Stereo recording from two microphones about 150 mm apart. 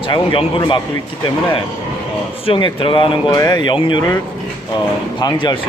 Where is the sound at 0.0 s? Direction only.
35° left (ahead or behind).